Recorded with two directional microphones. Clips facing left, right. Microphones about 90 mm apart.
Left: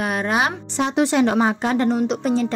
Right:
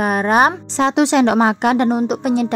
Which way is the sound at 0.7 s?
85° right.